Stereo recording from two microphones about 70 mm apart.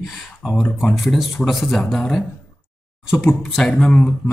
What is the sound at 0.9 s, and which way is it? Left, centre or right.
Speech, centre.